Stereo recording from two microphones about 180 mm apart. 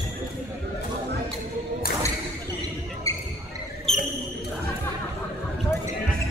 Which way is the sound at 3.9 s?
Centre (ahead or behind).